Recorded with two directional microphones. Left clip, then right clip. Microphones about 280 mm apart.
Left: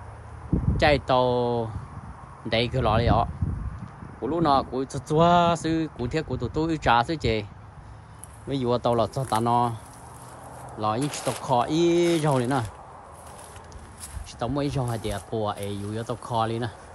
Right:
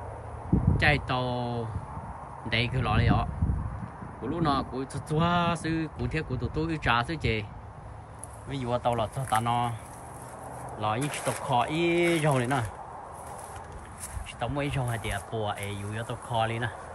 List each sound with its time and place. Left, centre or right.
0.7 s speech: centre
8.5 s speech: centre
10.8 s speech: centre
14.4 s speech: centre